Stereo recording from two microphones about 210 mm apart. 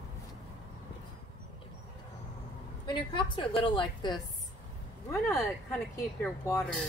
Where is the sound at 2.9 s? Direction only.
20° left (ahead or behind).